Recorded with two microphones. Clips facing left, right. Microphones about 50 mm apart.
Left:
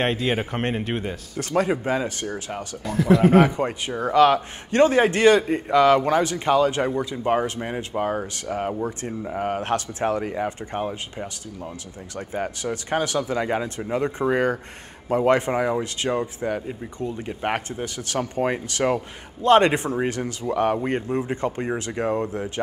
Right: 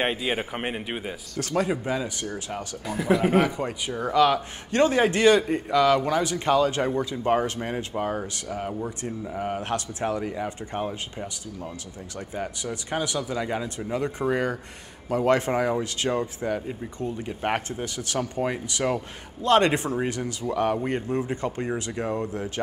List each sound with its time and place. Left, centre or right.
0.0 s a man's voice: centre
1.7 s speech: left
2.8 s speech: centre
3.2 s a man's voice: centre
3.5 s speech: left
4.6 s speech: left; by 8.0 s centre
8.2 s speech: left
10.8 s speech: centre
12.2 s speech: left
16.0 s speech: centre
17.8 s speech: left